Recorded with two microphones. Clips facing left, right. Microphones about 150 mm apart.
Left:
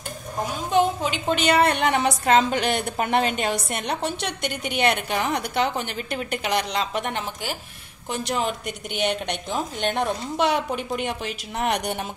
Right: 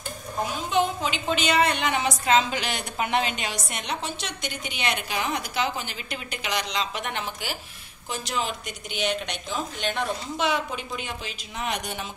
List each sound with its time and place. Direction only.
0.7 s a woman's voice: 50° left (ahead or behind)
8.1 s a woman's voice: 60° left (ahead or behind)